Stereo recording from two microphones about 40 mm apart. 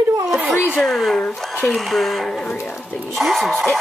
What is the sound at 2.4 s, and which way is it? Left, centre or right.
Speech, left.